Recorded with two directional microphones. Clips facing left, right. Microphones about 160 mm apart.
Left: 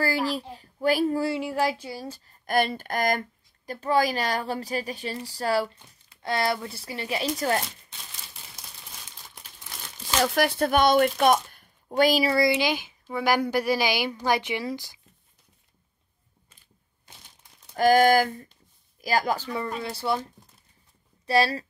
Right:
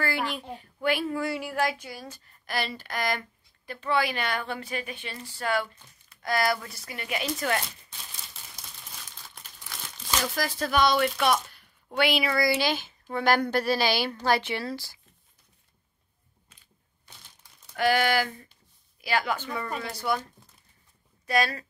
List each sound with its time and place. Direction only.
0.0 s speech: 35° left (ahead or behind)
1.3 s speech: 25° left (ahead or behind)
2.4 s speech: 50° left (ahead or behind); by 7.6 s 35° left (ahead or behind)
10.2 s speech: 65° left (ahead or behind); by 12.4 s 30° left (ahead or behind)
12.4 s a woman's voice: 15° left (ahead or behind)
17.7 s speech: 40° left (ahead or behind)
21.3 s speech: 30° left (ahead or behind)